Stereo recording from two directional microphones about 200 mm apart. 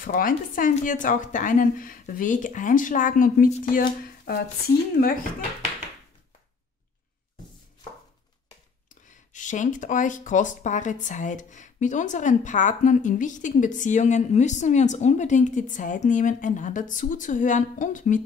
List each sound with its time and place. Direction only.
0.0 s speech: 45° left (ahead or behind)
9.1 s speech: 40° left (ahead or behind)